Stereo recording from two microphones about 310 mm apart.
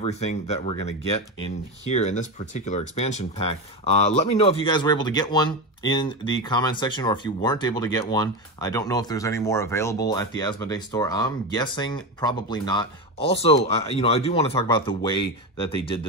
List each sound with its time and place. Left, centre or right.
0.0 s speech: left